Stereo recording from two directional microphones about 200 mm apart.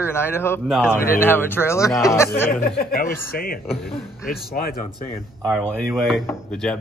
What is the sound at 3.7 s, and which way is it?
Speech, 30° left (ahead or behind).